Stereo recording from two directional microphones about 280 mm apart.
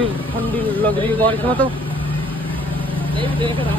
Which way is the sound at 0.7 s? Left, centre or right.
Centre.